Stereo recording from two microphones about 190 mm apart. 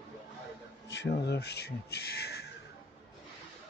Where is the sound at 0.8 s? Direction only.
65° left (ahead or behind).